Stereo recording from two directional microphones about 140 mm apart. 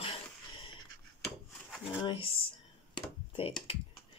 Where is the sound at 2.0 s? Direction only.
40° left (ahead or behind).